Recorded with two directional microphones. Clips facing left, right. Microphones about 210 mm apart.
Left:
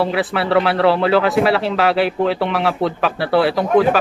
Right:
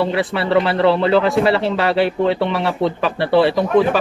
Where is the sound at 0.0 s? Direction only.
Centre (ahead or behind).